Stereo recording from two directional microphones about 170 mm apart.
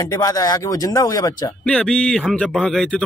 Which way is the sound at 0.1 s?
20° left (ahead or behind).